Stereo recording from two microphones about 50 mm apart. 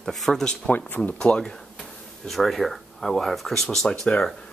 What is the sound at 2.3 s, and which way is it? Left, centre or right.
Speech, centre.